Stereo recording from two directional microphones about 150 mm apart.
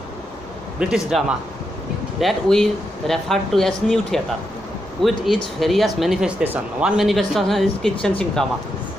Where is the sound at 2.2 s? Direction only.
5° left (ahead or behind).